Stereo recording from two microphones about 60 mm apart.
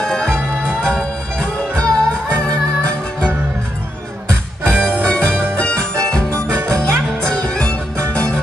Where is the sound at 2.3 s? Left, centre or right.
Centre.